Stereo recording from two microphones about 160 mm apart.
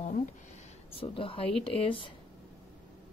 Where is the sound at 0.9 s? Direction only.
35° left (ahead or behind).